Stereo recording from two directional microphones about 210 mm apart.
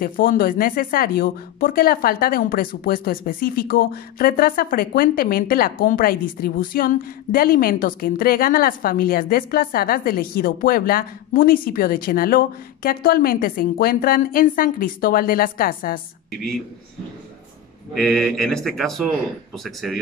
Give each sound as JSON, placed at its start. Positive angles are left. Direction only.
{"t": 0.0, "sound": "speech", "side_deg": 45}
{"t": 17.9, "sound": "speech", "side_deg": 0}